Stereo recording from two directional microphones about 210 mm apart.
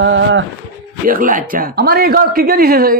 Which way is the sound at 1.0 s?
40° right (ahead or behind).